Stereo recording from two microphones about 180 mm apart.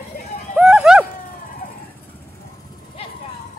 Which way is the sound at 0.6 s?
5° right (ahead or behind).